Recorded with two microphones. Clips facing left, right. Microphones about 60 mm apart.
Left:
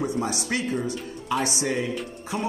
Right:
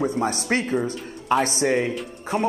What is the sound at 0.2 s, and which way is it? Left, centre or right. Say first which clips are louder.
Speech: right 4 dB; right.